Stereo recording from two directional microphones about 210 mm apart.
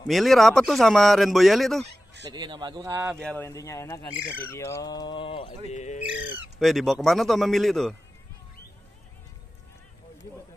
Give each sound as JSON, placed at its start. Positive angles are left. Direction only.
{"t": 0.0, "sound": "speech", "side_deg": 0}
{"t": 2.3, "sound": "speech", "side_deg": -20}
{"t": 3.2, "sound": "speech", "side_deg": 5}
{"t": 4.4, "sound": "bird", "side_deg": 10}
{"t": 6.6, "sound": "speech", "side_deg": 0}